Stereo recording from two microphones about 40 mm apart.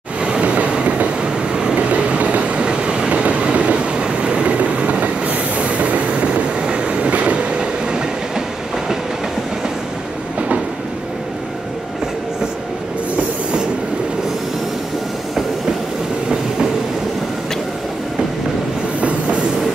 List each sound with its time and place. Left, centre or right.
0.2 s train: right
1.5 s waves: right
1.8 s train: right
18.9 s train: right